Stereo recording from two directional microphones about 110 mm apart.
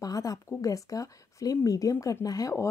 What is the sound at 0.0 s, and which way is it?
Speech, 35° left (ahead or behind).